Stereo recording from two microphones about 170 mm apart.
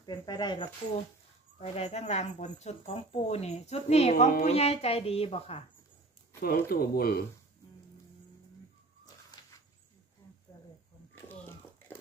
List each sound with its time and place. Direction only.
0.0 s speech: 25° left (ahead or behind)
1.6 s speech: 40° left (ahead or behind)
6.4 s speech: 60° left (ahead or behind)
11.2 s biting: 10° left (ahead or behind)